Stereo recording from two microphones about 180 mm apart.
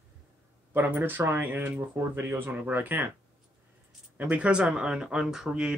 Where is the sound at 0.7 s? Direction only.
10° right (ahead or behind).